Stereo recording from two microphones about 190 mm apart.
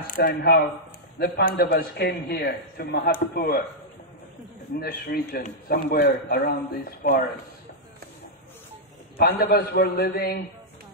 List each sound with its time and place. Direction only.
0.0 s speech: 45° left (ahead or behind)
0.3 s a man's voice: 65° left (ahead or behind)
1.2 s a man's voice: 50° left (ahead or behind)
3.3 s a man's voice: 50° left (ahead or behind)
4.7 s a man's voice: 55° left (ahead or behind)
9.2 s a man's voice: 55° left (ahead or behind)